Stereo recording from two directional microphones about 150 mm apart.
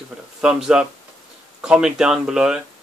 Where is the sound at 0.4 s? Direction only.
5° right (ahead or behind).